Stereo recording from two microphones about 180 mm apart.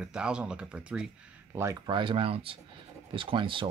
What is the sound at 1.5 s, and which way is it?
Speech, 20° right (ahead or behind).